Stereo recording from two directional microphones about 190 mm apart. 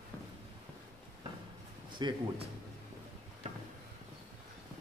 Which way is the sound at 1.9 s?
25° right (ahead or behind).